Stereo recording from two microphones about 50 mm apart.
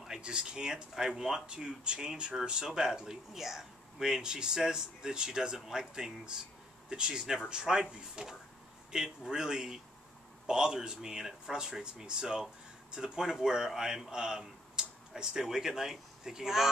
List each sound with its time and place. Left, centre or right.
0.0 s a man's voice: centre